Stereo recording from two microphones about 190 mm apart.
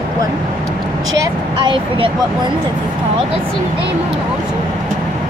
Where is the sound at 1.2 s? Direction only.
25° right (ahead or behind).